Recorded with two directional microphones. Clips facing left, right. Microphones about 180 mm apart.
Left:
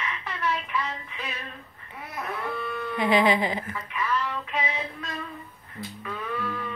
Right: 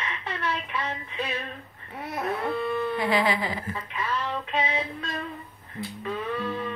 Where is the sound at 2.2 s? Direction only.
30° right (ahead or behind).